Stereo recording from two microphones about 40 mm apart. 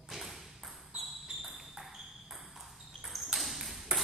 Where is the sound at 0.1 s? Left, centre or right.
Centre.